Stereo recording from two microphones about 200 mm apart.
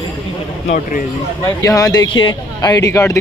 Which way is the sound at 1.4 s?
15° left (ahead or behind).